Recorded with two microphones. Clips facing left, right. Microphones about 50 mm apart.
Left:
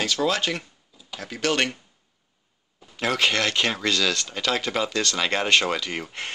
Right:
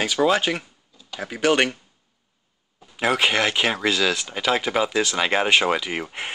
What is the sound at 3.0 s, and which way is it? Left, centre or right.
Speech, centre.